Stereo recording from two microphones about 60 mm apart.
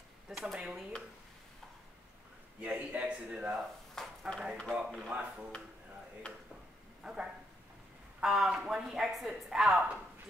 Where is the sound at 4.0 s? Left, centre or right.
Centre.